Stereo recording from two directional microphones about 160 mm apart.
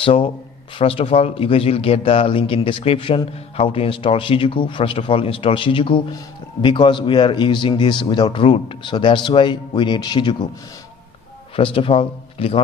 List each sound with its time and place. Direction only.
0.0 s a man's voice: 35° left (ahead or behind)
11.5 s a man's voice: 35° left (ahead or behind)